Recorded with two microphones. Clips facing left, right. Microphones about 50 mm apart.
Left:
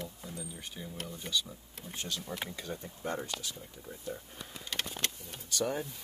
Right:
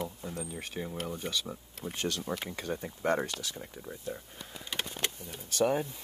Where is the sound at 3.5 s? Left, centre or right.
Right.